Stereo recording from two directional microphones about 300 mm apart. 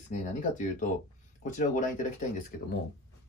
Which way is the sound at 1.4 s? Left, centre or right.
Left.